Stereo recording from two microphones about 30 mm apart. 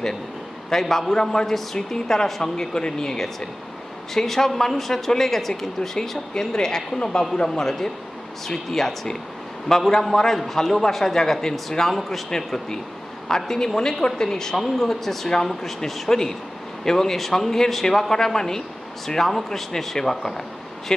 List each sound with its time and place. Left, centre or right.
0.7 s a woman's voice: centre
2.4 s a woman's voice: left
5.8 s a woman's voice: left
11.9 s a man's voice: centre
13.3 s a woman's voice: centre